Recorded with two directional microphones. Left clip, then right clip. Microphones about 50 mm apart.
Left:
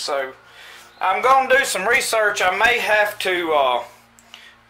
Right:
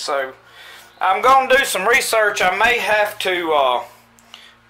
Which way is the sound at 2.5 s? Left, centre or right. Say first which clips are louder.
Right 1 dB; centre.